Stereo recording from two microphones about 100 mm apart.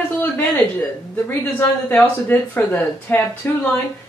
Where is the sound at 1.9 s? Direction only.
15° left (ahead or behind).